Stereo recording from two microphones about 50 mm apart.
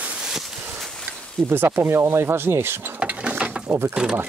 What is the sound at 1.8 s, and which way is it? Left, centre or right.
Speech, right.